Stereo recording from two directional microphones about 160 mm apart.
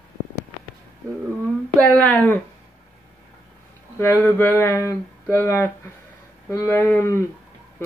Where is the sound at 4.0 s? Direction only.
15° left (ahead or behind).